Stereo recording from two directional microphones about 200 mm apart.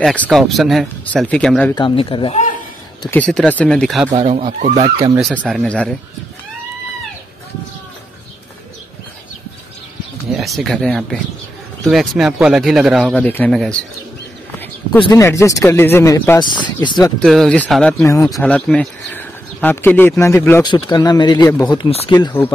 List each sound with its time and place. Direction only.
0.0 s speech: 5° left (ahead or behind)
1.8 s speech: 25° left (ahead or behind)
3.1 s speech: 5° left (ahead or behind)
4.1 s speech: 30° right (ahead or behind)
5.4 s speech: centre (ahead or behind)
10.3 s speech: centre (ahead or behind)
14.9 s speech: 20° left (ahead or behind)
17.2 s speech: centre (ahead or behind)
20.6 s speech: 25° left (ahead or behind)